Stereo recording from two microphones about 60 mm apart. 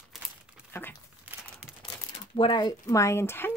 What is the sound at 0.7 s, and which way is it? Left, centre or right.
Crumpling, left.